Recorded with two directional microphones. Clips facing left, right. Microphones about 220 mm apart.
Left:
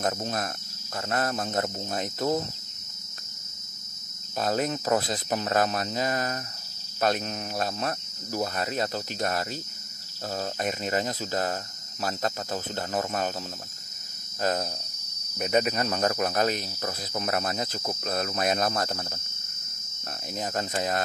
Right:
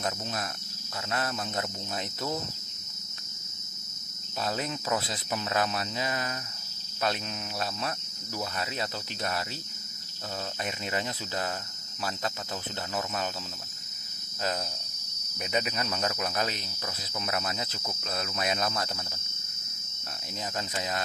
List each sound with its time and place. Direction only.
0.0 s cricket: 45° left (ahead or behind)
4.4 s cricket: 45° left (ahead or behind)
10.6 s cricket: 45° left (ahead or behind)
12.9 s cricket: 45° left (ahead or behind)
15.4 s cricket: 50° left (ahead or behind)
20.5 s cricket: 50° left (ahead or behind)